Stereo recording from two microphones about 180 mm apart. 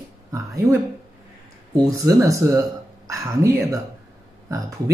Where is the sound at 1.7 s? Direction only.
20° right (ahead or behind).